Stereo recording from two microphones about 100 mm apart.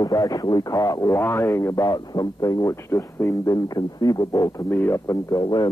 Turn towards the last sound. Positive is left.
turn(degrees=40)  # may be behind; listen again after turning